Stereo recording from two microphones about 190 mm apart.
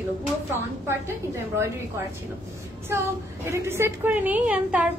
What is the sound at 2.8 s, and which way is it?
A woman's voice, 15° right (ahead or behind).